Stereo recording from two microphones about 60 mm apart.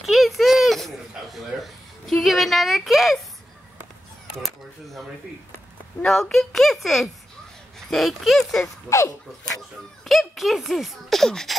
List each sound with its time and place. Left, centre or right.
0.0 s a sound: centre
4.4 s speech: centre
6.3 s speech: centre
8.8 s a child's voice: left
10.0 s speech: centre